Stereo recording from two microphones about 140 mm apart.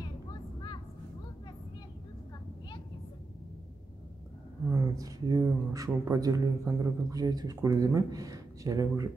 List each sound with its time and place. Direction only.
0.0 s vehicle: 30° left (ahead or behind)
4.6 s speech: 20° right (ahead or behind)